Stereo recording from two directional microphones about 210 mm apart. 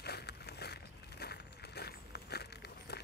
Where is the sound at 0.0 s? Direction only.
50° left (ahead or behind).